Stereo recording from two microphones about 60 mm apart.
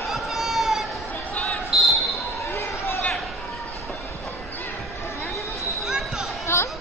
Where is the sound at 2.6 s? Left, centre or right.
Left.